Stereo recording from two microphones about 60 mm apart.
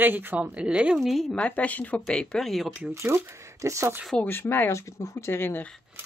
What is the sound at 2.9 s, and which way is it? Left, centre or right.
Speech, right.